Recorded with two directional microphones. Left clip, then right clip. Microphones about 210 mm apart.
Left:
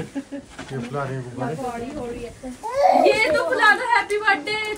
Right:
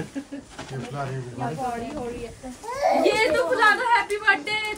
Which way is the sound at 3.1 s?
Centre (ahead or behind).